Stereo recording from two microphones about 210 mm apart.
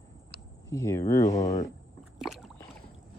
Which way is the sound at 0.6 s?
15° left (ahead or behind).